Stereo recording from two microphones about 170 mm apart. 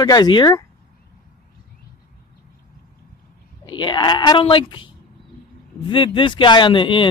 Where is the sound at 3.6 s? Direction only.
25° left (ahead or behind).